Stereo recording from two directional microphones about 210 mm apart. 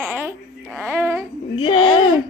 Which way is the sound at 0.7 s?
5° right (ahead or behind).